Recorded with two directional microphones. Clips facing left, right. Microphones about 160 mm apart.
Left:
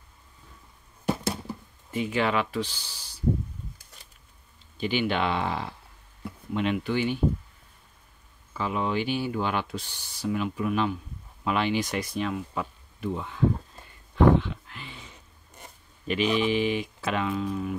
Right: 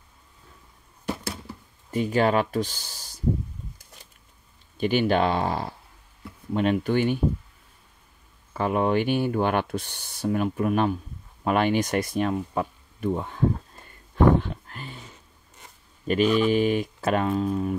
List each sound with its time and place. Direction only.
1.9 s speech: 40° right (ahead or behind)
4.7 s speech: 45° right (ahead or behind)
8.5 s speech: 50° right (ahead or behind)
14.1 s a sound: 45° right (ahead or behind)
16.1 s speech: 45° right (ahead or behind)